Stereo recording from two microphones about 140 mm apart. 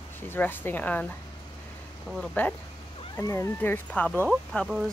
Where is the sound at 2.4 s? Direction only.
10° left (ahead or behind).